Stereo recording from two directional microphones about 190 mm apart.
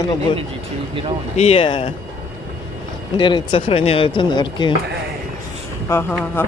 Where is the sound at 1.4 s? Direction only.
30° left (ahead or behind).